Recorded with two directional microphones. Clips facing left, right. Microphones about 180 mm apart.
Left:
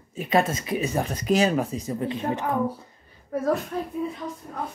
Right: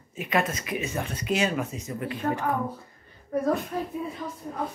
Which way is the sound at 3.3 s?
5° left (ahead or behind).